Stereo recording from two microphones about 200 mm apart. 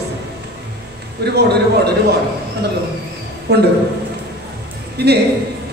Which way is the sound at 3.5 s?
55° right (ahead or behind).